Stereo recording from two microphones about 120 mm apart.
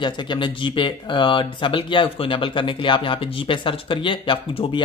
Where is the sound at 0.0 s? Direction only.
40° left (ahead or behind).